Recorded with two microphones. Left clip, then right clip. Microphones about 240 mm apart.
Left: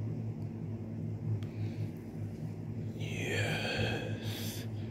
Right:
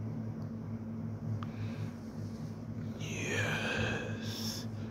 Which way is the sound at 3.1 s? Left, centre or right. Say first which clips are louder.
Even; centre.